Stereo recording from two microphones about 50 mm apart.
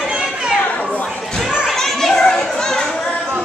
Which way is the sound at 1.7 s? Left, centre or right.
Centre.